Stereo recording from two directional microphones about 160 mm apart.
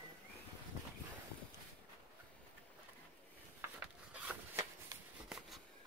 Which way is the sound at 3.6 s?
10° right (ahead or behind).